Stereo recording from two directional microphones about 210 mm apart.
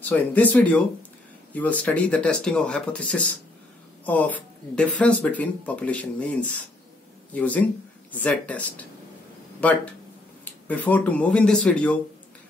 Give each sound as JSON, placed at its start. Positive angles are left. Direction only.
{"t": 0.0, "sound": "speech", "side_deg": 5}
{"t": 10.4, "sound": "speech", "side_deg": 10}